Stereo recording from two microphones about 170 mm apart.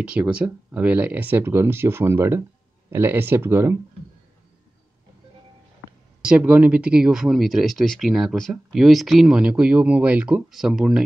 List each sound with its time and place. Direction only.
0.0 s speech: 5° right (ahead or behind)
6.2 s speech: 5° right (ahead or behind)